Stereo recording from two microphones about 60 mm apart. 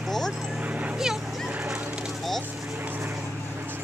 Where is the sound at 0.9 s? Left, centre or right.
Centre.